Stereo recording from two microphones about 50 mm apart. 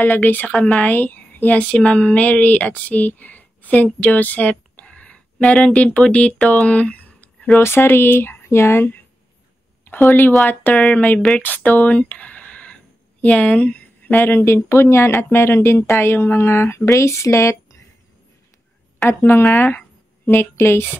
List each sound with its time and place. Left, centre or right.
0.0 s a woman's voice: left; by 5.7 s centre
5.7 s a woman's voice: left
7.5 s speech: left
10.0 s a woman's voice: left
13.2 s a sound: left
14.1 s speech: left
15.2 s speech: left
16.8 s speech: left
19.0 s speech: left